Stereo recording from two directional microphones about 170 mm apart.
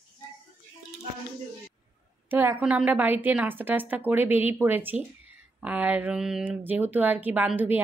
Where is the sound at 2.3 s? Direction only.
10° right (ahead or behind).